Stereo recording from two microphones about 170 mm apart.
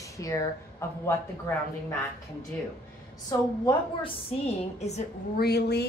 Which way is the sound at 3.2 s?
25° left (ahead or behind).